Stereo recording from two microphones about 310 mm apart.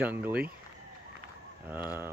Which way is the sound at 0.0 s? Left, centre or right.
Centre.